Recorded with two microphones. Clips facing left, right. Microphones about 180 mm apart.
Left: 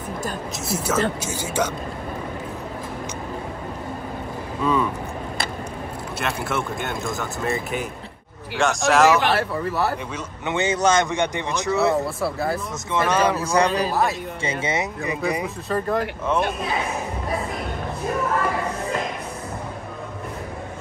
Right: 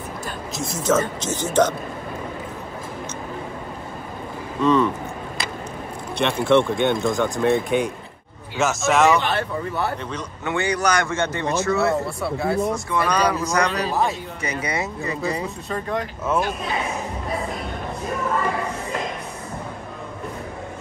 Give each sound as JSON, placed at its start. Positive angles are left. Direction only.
{"t": 0.6, "sound": "speech", "side_deg": 5}
{"t": 4.6, "sound": "speech", "side_deg": 10}
{"t": 6.1, "sound": "speech", "side_deg": 5}
{"t": 10.4, "sound": "speech", "side_deg": 20}
{"t": 11.9, "sound": "speech", "side_deg": 0}
{"t": 12.9, "sound": "speech", "side_deg": 25}
{"t": 15.7, "sound": "speech", "side_deg": 5}